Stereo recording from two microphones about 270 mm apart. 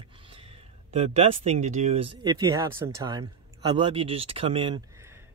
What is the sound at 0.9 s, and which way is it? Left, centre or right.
Speech, right.